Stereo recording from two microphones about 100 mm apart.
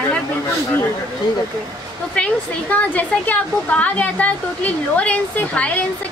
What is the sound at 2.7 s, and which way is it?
A woman's voice, 15° left (ahead or behind).